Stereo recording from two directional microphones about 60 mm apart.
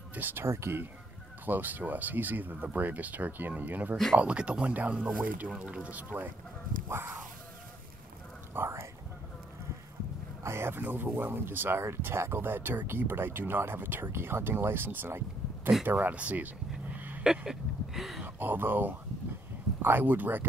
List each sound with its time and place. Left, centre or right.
0.1 s speech: right
1.4 s speech: right
8.5 s whispering: right
10.4 s speech: right
15.8 s speech: right
16.9 s a sound: right
17.5 s a sound: centre
18.2 s speech: right